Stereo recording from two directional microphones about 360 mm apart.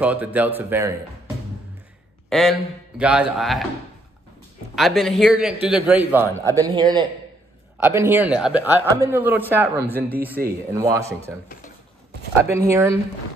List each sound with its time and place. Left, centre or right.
0.0 s a man's voice: centre
2.2 s a sound: centre
3.0 s a man's voice: centre
4.7 s a man's voice: centre
10.4 s speech: right
10.7 s speech: centre
12.4 s speech: centre